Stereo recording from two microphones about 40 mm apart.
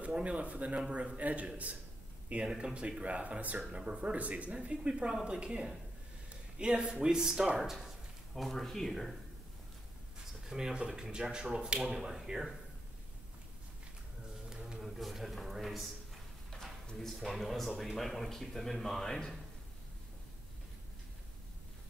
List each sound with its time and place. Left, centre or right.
0.0 s speech: right
2.4 s speech: centre
3.0 s speech: right; by 7.9 s centre
8.4 s speech: centre
10.4 s speech: centre
14.8 s speech: centre
16.9 s speech: centre